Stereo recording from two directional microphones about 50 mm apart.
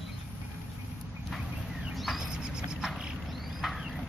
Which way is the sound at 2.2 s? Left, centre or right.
Centre.